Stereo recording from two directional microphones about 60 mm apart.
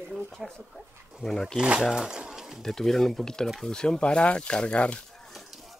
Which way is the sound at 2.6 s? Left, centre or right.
Centre.